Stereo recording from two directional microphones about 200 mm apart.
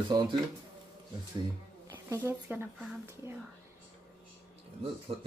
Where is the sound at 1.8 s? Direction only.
10° right (ahead or behind).